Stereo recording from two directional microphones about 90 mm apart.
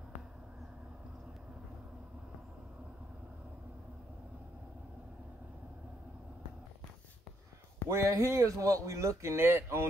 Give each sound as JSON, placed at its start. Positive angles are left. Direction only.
{"t": 7.9, "sound": "a man's voice", "side_deg": -30}